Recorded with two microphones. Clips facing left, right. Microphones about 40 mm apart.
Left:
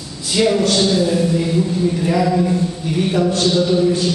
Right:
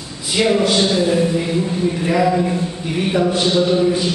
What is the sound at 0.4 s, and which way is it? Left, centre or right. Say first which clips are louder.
A man's voice: even; centre.